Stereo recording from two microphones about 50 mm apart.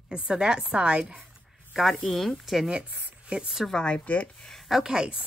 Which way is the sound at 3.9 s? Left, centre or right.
Left.